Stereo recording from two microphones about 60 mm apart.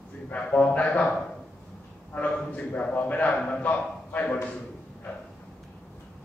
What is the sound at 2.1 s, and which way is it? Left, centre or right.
A man's voice, left.